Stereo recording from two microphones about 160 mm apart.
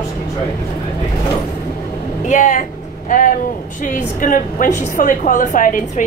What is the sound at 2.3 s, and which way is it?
Vehicle, 50° left (ahead or behind).